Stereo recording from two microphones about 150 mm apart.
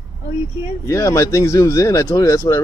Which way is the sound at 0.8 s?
20° left (ahead or behind).